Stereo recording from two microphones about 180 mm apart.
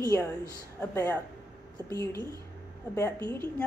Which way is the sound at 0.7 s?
10° left (ahead or behind).